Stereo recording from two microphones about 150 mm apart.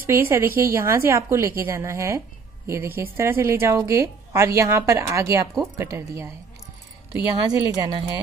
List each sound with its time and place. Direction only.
0.0 s a woman's voice: 15° right (ahead or behind)